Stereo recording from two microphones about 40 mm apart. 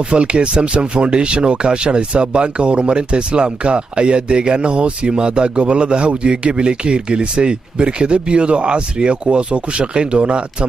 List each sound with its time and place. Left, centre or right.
0.1 s speech: right